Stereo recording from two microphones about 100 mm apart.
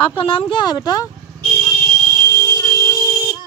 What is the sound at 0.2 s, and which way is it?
Speech, 60° left (ahead or behind).